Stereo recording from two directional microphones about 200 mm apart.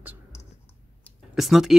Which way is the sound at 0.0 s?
10° right (ahead or behind).